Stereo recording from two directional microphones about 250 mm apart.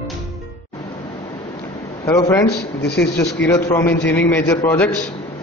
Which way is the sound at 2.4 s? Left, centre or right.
Left.